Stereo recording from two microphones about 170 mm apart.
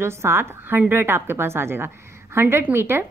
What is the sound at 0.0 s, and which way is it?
A woman's voice, 15° right (ahead or behind).